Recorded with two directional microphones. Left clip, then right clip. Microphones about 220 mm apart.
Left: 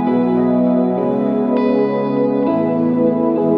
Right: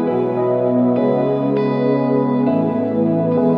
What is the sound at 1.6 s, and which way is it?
Music, centre (ahead or behind).